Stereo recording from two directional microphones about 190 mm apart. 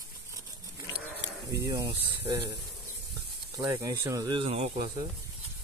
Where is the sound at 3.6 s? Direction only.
15° right (ahead or behind); by 4.7 s 30° right (ahead or behind).